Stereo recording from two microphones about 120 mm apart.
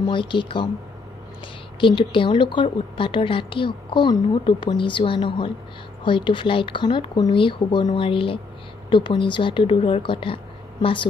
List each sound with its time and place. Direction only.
0.0 s a woman's voice: 45° left (ahead or behind)
1.8 s a woman's voice: 45° left (ahead or behind)